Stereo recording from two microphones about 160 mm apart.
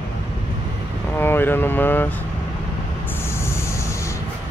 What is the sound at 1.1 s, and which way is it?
Speech, 15° left (ahead or behind).